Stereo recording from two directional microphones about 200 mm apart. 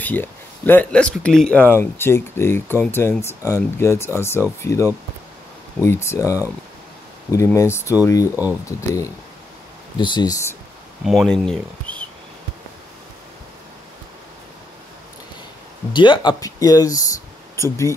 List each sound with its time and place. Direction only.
0.0 s speech: 10° left (ahead or behind)
11.1 s speech: centre (ahead or behind)
15.9 s speech: 25° left (ahead or behind)